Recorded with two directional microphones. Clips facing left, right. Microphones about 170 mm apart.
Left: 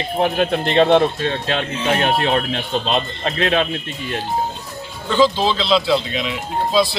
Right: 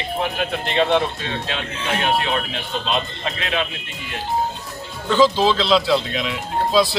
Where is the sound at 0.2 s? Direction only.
35° left (ahead or behind).